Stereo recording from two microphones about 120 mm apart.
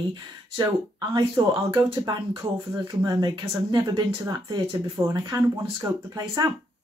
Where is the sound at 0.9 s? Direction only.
30° right (ahead or behind).